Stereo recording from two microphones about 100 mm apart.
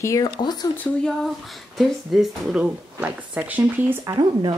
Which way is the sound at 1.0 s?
Centre (ahead or behind).